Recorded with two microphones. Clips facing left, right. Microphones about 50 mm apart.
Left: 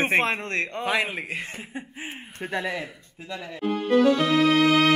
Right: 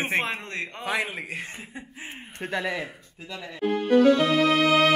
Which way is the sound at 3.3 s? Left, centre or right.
Centre.